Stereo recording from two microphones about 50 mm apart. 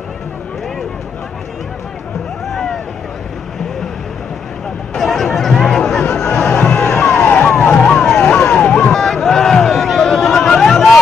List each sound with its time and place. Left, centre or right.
2.4 s vehicle: centre
4.9 s chatter: centre
6.0 s music: centre
7.5 s a sound: centre
8.3 s vehicle: left
9.0 s a sound: centre